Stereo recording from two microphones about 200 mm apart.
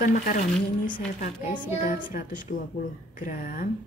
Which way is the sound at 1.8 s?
40° left (ahead or behind).